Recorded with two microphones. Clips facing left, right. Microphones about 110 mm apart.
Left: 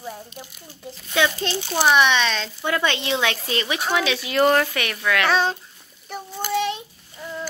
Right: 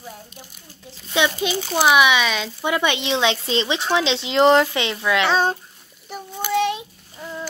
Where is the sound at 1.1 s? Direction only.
20° right (ahead or behind).